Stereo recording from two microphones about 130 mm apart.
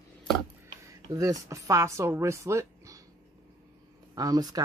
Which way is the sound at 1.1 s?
25° right (ahead or behind).